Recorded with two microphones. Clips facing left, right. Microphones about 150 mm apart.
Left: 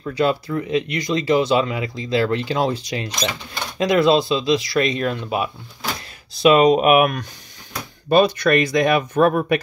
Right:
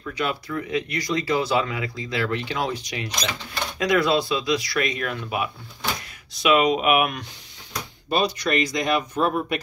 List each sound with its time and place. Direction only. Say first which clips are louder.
0.0 s speech: left 8 dB; 30° left (ahead or behind); by 9.6 s 55° left (ahead or behind)